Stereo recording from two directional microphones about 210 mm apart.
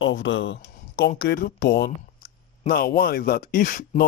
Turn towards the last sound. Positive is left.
turn(degrees=40)  # may be behind; listen again after turning